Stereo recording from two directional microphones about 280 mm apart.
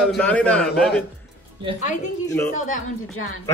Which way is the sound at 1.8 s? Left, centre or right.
Left.